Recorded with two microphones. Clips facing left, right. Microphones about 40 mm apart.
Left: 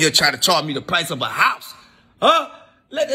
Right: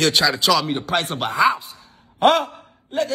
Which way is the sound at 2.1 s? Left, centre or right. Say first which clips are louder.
Left 1 dB; left.